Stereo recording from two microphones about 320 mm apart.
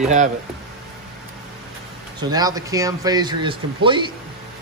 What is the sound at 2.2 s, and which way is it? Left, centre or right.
A man's voice, centre.